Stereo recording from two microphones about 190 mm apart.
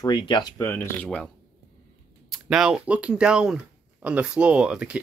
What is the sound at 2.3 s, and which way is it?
Speech, 5° right (ahead or behind).